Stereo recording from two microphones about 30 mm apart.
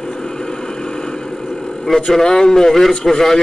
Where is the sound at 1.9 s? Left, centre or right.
Left.